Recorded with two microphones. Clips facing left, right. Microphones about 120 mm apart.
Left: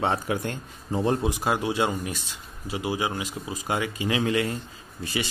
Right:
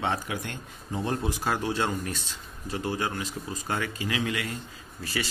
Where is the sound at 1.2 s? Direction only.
20° left (ahead or behind).